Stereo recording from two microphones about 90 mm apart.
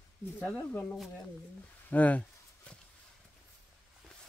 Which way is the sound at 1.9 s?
15° left (ahead or behind).